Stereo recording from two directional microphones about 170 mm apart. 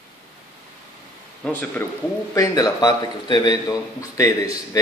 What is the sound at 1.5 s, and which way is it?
A man's voice, 10° left (ahead or behind).